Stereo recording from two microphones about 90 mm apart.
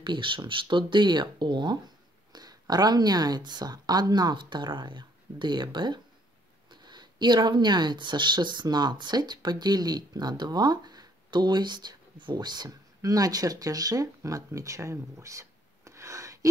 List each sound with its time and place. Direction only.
0.0 s speech: 65° right (ahead or behind); by 16.3 s 35° right (ahead or behind)